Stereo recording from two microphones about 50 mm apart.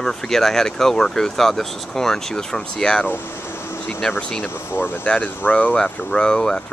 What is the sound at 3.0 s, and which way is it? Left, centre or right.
Vehicle, left.